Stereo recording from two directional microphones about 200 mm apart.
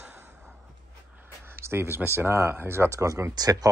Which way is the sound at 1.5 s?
10° right (ahead or behind).